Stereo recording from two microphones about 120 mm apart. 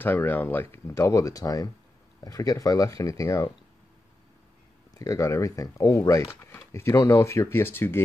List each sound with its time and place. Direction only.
0.0 s speech: 15° left (ahead or behind)
4.9 s speech: 25° left (ahead or behind)